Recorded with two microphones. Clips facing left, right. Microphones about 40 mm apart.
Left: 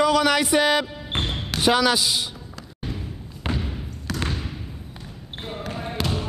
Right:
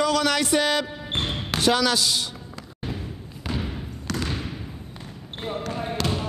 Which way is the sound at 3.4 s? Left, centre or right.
Left.